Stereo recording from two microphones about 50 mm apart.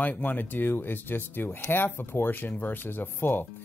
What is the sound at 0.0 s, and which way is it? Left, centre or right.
Speech, left.